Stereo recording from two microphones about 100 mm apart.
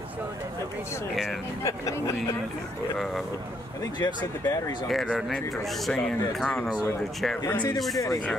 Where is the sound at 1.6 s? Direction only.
30° left (ahead or behind).